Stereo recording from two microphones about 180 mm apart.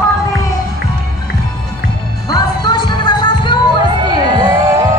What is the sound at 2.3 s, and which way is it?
Music, 20° left (ahead or behind).